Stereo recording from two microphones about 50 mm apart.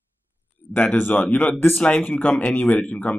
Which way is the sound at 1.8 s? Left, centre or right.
Left.